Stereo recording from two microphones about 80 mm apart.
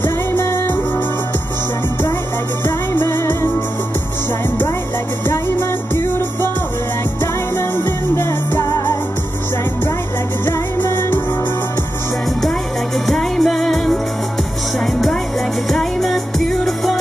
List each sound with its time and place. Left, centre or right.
0.0 s music: left
2.6 s music: left
8.2 s music: left
10.9 s music: left
13.0 s music: centre
15.7 s music: centre